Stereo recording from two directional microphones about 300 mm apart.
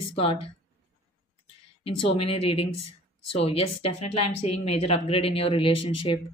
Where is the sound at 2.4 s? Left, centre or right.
Centre.